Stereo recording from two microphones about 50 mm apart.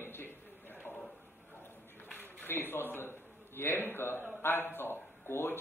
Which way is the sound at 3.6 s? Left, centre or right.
Left.